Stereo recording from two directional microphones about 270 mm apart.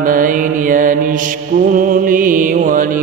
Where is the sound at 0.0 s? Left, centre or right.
Right.